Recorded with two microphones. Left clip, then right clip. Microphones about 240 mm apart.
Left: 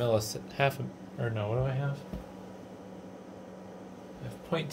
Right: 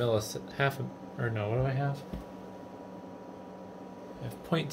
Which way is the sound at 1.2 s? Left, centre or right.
Centre.